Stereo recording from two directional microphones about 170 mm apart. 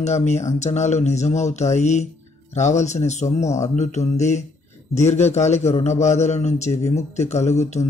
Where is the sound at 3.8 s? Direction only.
40° left (ahead or behind).